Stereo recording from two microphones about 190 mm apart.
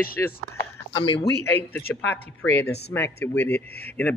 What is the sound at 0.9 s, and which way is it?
Speech, 25° left (ahead or behind).